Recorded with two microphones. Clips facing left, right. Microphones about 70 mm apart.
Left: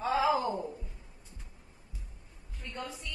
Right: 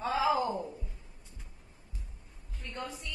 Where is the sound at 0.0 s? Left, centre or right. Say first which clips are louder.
Left 1 dB; centre.